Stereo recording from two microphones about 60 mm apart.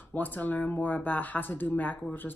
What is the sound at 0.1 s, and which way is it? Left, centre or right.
Speech, left.